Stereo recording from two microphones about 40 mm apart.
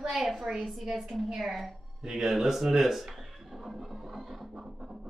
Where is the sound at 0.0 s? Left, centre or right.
Centre.